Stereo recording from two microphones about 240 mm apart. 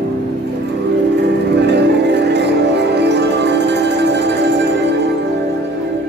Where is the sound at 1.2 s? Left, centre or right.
Right.